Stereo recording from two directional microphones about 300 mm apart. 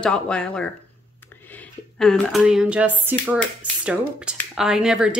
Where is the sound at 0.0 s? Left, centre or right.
Centre.